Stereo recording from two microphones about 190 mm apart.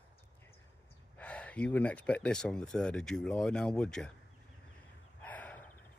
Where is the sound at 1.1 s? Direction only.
5° left (ahead or behind).